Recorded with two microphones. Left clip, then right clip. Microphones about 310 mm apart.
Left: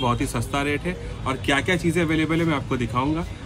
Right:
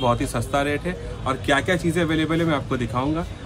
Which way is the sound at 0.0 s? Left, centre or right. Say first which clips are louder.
Right 2 dB; centre.